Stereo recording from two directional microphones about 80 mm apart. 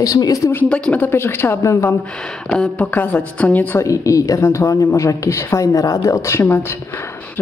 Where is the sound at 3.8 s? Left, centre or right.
Left.